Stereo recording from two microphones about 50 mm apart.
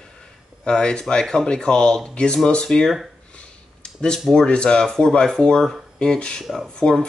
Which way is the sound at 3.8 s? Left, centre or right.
Centre.